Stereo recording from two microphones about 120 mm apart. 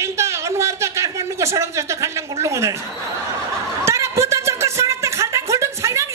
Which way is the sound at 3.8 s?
25° right (ahead or behind).